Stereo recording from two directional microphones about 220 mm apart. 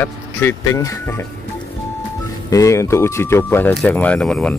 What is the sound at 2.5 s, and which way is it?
Speech, 15° left (ahead or behind).